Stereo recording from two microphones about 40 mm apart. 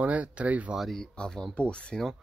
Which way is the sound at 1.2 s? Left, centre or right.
Left.